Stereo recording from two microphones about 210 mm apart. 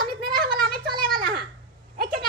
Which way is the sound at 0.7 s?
45° right (ahead or behind).